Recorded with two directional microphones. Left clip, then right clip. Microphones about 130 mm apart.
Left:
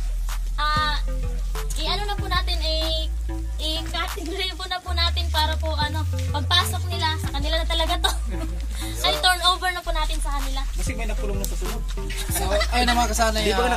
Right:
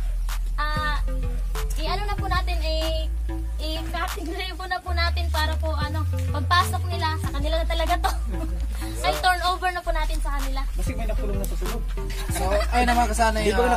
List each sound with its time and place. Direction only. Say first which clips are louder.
0.3 s music: left 5 dB; 5° left (ahead or behind)
7.1 s a woman's voice: left 2 dB; centre (ahead or behind)
11.6 s music: even; centre (ahead or behind)
13.0 s speech: even; 35° right (ahead or behind)